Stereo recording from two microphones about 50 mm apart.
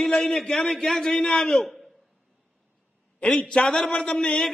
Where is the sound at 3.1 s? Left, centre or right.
Left.